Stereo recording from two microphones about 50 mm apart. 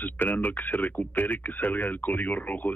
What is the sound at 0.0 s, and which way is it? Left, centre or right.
Speech, left.